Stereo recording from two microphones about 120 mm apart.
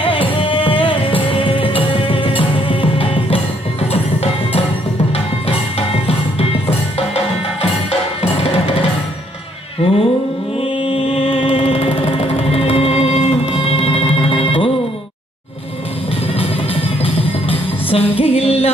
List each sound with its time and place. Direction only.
0.0 s music: 45° left (ahead or behind)
3.9 s music: 60° left (ahead or behind)
5.8 s music: 60° left (ahead or behind)
9.8 s a sound: 50° left (ahead or behind)
10.8 s music: 50° left (ahead or behind)
17.0 s music: 55° left (ahead or behind)